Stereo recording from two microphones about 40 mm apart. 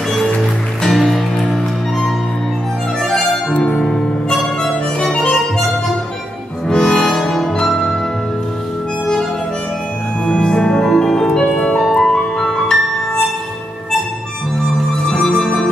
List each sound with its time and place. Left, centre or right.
0.8 s music: centre
3.6 s music: centre
6.7 s music: centre
10.2 s music: left
15.3 s music: centre